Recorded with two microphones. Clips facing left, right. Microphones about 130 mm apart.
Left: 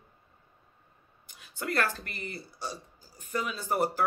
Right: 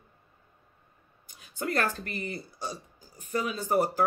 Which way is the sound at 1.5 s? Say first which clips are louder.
Right 1 dB; 40° right (ahead or behind).